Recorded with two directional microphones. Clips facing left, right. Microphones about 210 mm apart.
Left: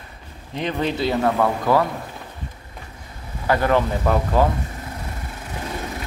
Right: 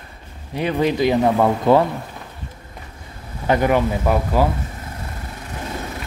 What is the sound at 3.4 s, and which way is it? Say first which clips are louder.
Speech: right 2 dB; 20° right (ahead or behind).